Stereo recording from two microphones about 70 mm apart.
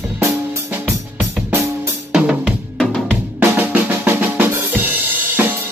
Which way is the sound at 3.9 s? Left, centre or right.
Right.